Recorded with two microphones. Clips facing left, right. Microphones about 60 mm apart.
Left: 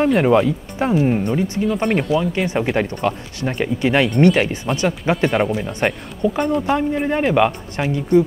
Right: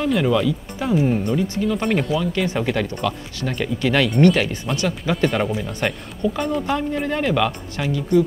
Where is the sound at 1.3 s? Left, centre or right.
Centre.